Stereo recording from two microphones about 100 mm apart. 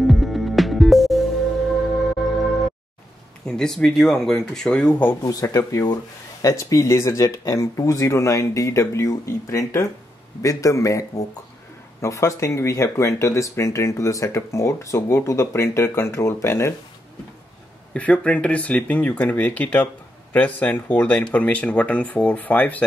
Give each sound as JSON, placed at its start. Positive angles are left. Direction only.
{"t": 0.0, "sound": "music", "side_deg": 0}
{"t": 3.4, "sound": "speech", "side_deg": 5}
{"t": 5.2, "sound": "speech", "side_deg": 35}
{"t": 17.9, "sound": "speech", "side_deg": 15}